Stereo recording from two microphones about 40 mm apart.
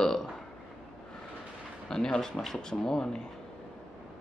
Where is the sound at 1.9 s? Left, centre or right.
Centre.